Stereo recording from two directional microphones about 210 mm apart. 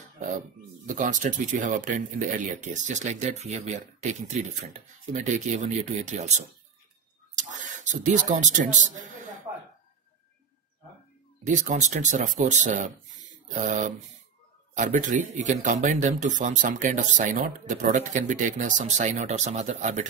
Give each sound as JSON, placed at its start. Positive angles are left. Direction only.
{"t": 0.8, "sound": "speech", "side_deg": -35}
{"t": 7.3, "sound": "a sound", "side_deg": -35}
{"t": 11.4, "sound": "speech", "side_deg": -35}
{"t": 14.7, "sound": "speech", "side_deg": -35}